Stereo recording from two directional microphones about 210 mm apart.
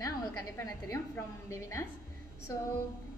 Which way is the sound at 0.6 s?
10° left (ahead or behind).